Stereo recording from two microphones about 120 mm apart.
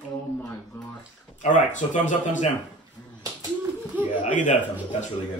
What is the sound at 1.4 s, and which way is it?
Speech, 90° left.